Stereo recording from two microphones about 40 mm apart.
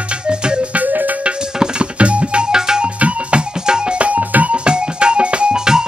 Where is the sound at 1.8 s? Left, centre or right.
Right.